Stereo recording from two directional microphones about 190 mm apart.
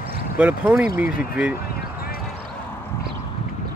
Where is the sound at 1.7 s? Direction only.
50° left (ahead or behind).